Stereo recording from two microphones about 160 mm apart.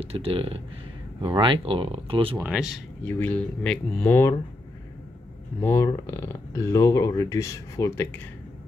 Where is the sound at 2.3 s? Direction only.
10° right (ahead or behind).